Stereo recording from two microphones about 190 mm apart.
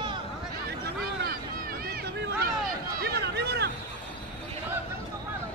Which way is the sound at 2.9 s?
55° right (ahead or behind).